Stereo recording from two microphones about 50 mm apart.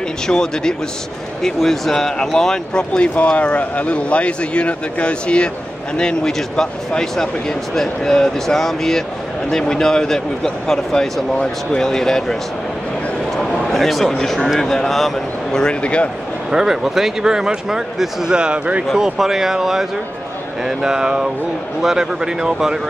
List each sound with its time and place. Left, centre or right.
0.3 s speech: centre
13.4 s speech: centre
15.5 s speech: centre
16.5 s speech: centre
18.3 s speech: centre
18.9 s speech: centre